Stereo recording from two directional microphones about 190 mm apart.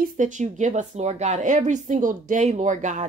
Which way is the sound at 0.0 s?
40° right (ahead or behind).